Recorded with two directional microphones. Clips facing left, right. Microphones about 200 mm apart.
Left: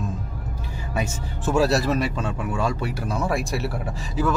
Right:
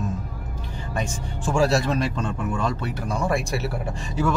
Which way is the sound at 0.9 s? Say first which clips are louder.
Left 1 dB; 5° left (ahead or behind).